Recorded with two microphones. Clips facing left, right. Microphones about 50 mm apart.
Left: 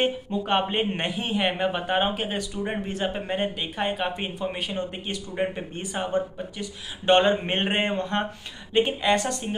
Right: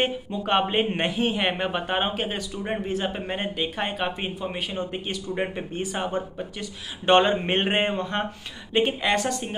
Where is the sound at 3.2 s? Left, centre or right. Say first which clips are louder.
Even; centre.